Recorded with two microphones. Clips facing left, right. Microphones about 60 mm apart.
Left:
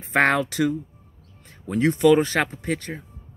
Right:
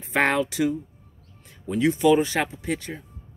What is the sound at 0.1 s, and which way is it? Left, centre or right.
Speech, left.